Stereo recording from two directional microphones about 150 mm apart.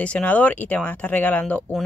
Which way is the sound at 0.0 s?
10° left (ahead or behind).